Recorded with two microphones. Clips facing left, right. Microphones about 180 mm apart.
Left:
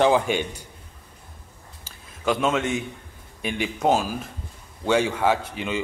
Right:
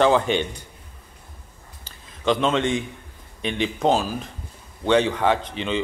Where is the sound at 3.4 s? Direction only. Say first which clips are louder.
Right 2 dB; 5° left (ahead or behind).